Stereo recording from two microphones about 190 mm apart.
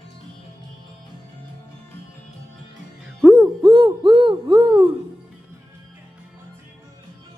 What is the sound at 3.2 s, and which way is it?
Hoot, 15° right (ahead or behind).